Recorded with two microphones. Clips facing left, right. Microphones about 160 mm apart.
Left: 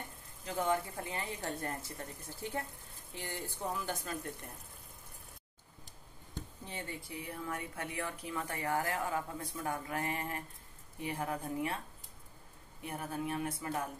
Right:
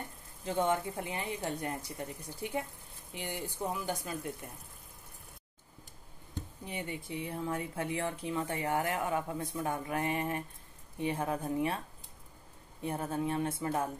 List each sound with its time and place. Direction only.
0.5 s speech: 25° right (ahead or behind); by 4.5 s 10° right (ahead or behind)
6.6 s speech: 15° right (ahead or behind)
12.8 s speech: 25° right (ahead or behind)